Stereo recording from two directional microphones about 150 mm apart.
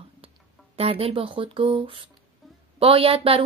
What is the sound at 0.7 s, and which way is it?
Speech, 40° right (ahead or behind).